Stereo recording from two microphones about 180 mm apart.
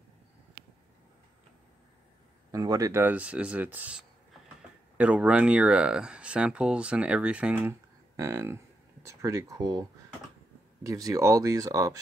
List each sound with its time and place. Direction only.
2.5 s speech: 20° right (ahead or behind)